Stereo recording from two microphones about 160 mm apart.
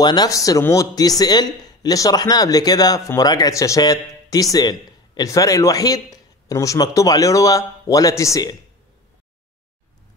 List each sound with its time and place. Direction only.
0.0 s speech: 25° left (ahead or behind)